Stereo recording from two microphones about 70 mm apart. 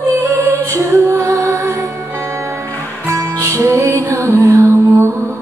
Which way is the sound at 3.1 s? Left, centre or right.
Right.